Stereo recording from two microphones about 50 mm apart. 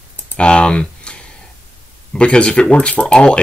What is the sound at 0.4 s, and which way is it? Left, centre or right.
Typing, centre.